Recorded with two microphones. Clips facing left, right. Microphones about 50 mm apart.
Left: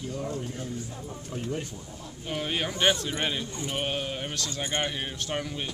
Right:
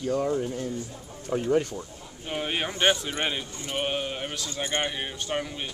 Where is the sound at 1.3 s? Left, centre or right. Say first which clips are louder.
Right 10 dB; right.